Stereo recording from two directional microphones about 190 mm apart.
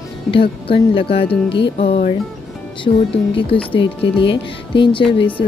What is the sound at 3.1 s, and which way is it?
Speech, 30° left (ahead or behind).